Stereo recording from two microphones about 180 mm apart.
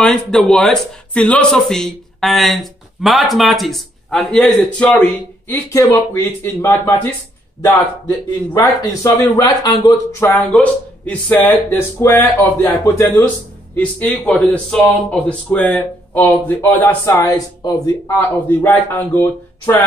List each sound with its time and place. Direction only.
0.0 s speech: 5° left (ahead or behind)
5.5 s speech: 15° left (ahead or behind)